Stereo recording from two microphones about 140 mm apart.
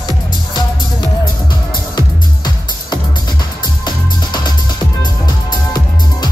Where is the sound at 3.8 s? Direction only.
30° left (ahead or behind).